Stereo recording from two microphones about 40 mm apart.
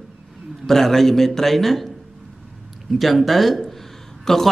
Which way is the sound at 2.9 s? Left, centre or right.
Centre.